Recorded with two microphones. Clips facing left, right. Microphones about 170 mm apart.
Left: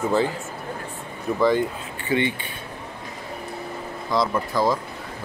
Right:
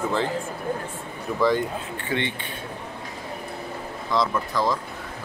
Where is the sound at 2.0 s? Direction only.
5° left (ahead or behind).